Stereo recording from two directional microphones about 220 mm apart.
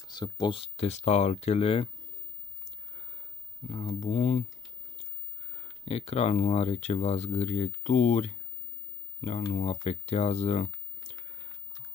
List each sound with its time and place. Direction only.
0.1 s speech: 20° left (ahead or behind)
3.6 s speech: 30° left (ahead or behind)
5.6 s speech: 30° left (ahead or behind)
9.5 s speech: 30° left (ahead or behind)